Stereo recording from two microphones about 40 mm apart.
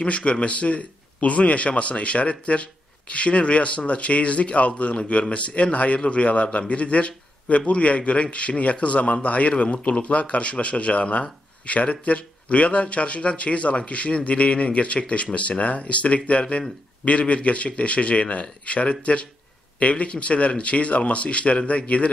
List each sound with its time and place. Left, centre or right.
0.0 s speech: left